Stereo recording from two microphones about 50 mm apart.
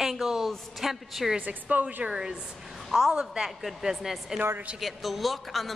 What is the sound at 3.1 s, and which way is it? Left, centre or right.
A woman's voice, centre.